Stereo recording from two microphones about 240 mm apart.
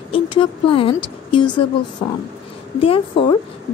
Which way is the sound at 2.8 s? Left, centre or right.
Left.